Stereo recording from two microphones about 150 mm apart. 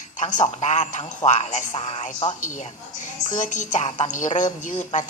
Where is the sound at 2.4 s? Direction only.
55° left (ahead or behind).